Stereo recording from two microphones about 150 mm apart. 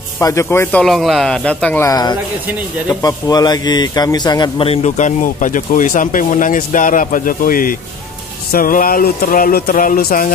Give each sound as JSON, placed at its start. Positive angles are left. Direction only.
{"t": 0.2, "sound": "speech", "side_deg": 20}
{"t": 1.9, "sound": "a man's voice", "side_deg": 25}